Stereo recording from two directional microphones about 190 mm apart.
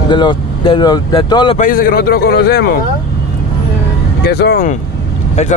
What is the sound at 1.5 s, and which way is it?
A man's voice, 45° left (ahead or behind).